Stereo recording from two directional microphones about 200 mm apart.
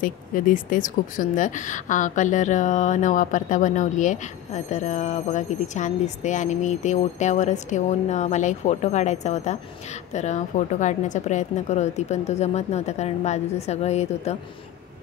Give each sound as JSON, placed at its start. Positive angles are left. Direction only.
{"t": 0.0, "sound": "a woman's voice", "side_deg": 45}